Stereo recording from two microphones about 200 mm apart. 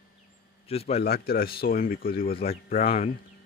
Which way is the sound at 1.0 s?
50° left (ahead or behind).